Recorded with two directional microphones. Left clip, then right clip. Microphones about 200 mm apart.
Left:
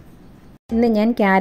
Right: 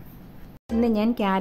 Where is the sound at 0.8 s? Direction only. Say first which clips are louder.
Left 7 dB; 15° left (ahead or behind).